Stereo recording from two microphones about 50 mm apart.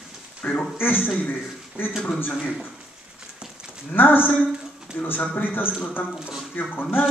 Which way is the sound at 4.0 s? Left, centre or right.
Left.